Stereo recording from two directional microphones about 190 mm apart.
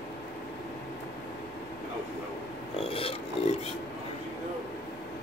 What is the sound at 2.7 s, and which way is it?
Filing, 30° left (ahead or behind).